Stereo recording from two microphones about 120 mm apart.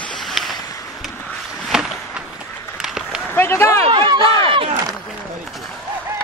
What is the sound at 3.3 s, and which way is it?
Run, 20° left (ahead or behind).